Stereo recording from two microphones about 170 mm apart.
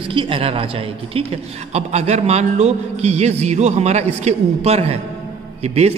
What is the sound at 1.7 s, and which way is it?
A man's voice, 40° right (ahead or behind).